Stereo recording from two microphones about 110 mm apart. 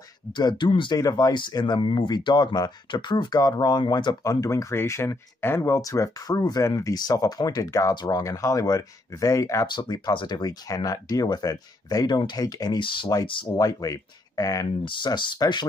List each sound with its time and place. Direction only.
0.4 s speech: 40° left (ahead or behind)
1.0 s speech: 35° left (ahead or behind)
13.5 s speech: 35° left (ahead or behind)
14.9 s speech: 45° left (ahead or behind)